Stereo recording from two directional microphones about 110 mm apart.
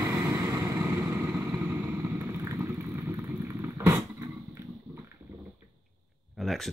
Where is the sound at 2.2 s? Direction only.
25° right (ahead or behind).